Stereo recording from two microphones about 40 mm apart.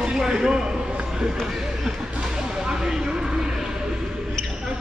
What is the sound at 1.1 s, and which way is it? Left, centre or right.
Basketball bounce, centre.